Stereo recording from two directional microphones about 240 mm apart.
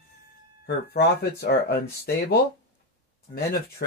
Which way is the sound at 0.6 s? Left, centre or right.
Left.